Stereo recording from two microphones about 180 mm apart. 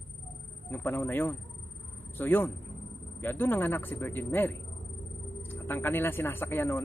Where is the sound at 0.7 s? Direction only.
10° left (ahead or behind).